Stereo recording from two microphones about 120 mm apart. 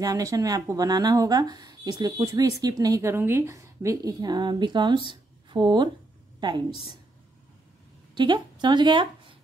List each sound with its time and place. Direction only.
0.0 s speech: 30° right (ahead or behind)
8.1 s speech: 40° right (ahead or behind)